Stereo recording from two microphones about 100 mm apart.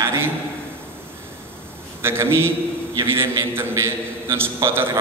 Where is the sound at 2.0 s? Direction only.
25° right (ahead or behind).